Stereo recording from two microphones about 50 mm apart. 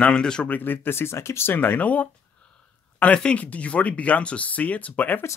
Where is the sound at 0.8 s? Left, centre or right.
Left.